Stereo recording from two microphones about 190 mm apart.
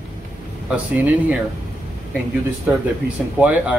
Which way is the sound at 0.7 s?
5° right (ahead or behind).